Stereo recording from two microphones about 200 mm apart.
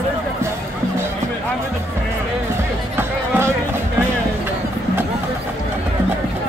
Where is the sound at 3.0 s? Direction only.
10° right (ahead or behind).